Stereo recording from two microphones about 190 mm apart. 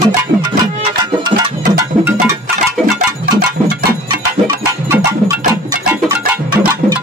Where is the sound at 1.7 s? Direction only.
20° right (ahead or behind).